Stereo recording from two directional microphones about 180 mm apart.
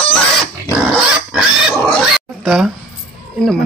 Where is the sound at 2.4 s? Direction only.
5° right (ahead or behind).